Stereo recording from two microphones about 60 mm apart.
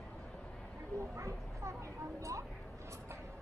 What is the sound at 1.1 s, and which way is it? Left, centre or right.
Speech, right.